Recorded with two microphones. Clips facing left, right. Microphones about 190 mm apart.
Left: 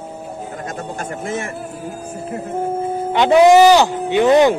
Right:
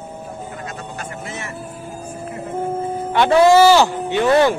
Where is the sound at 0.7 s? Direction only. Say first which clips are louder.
Left 4 dB; 50° left (ahead or behind).